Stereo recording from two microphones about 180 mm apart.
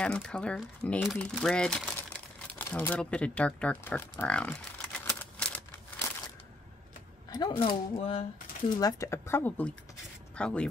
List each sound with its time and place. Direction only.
0.0 s speech: 5° left (ahead or behind)
7.2 s speech: 25° left (ahead or behind); by 10.7 s 5° left (ahead or behind)